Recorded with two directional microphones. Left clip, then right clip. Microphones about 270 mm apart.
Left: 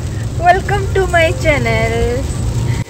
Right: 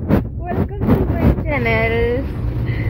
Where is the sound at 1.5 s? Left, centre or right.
Centre.